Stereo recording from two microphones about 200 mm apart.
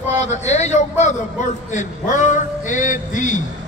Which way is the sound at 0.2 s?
35° left (ahead or behind).